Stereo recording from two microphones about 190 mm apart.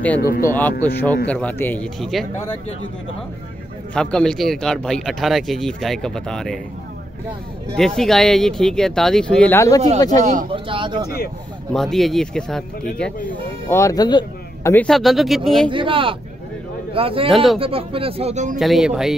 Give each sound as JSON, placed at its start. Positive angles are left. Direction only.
{"t": 0.2, "sound": "speech", "side_deg": 50}
{"t": 0.5, "sound": "speech", "side_deg": 10}
{"t": 3.9, "sound": "speech", "side_deg": 5}
{"t": 7.7, "sound": "speech", "side_deg": 5}
{"t": 10.2, "sound": "speech", "side_deg": -45}
{"t": 10.5, "sound": "speech", "side_deg": -25}
{"t": 11.7, "sound": "speech", "side_deg": 0}
{"t": 14.9, "sound": "speech", "side_deg": 0}
{"t": 15.7, "sound": "speech", "side_deg": -25}
{"t": 18.6, "sound": "speech", "side_deg": 0}